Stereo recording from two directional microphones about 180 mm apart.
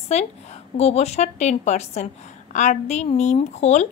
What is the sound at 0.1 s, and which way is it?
A woman's voice, 35° left (ahead or behind).